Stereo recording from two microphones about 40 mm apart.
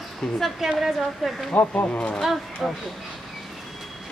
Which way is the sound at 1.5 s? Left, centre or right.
Left.